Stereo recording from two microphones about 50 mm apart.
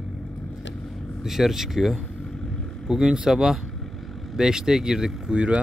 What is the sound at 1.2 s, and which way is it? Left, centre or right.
Speech, centre.